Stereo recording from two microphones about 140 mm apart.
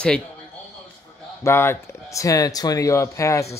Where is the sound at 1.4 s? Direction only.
15° left (ahead or behind).